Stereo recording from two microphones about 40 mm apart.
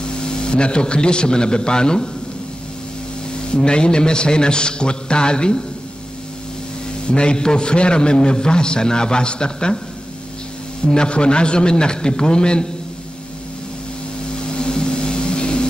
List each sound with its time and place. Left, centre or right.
0.0 s a man's voice: left
3.5 s a man's voice: left
7.1 s a man's voice: left
10.9 s a man's voice: left
14.5 s vehicle: left